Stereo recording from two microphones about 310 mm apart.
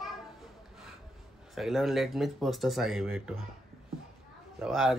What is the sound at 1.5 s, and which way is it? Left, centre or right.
Speech, centre.